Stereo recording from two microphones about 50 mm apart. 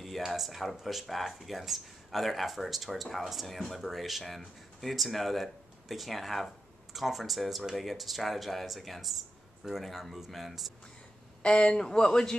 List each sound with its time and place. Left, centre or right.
0.0 s speech: centre
11.4 s speech: centre